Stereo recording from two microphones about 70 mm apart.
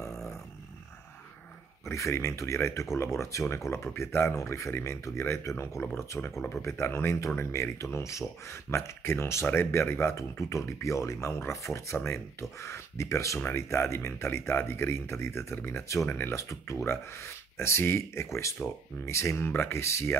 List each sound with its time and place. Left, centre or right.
0.0 s roar: centre
1.9 s speech: left
4.4 s speech: left
7.8 s speech: left